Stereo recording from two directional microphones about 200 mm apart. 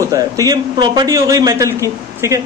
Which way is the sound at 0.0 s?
20° right (ahead or behind).